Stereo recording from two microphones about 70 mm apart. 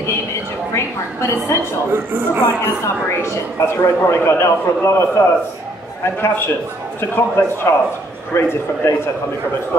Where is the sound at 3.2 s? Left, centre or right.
Left.